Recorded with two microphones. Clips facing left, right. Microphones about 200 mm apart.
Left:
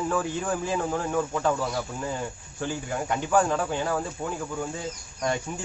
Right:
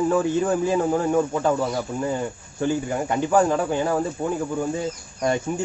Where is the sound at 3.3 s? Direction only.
20° right (ahead or behind).